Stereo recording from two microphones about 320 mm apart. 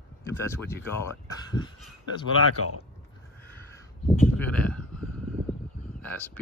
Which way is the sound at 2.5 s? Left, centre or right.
Left.